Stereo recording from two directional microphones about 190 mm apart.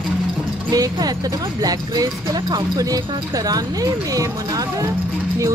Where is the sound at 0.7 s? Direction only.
20° right (ahead or behind).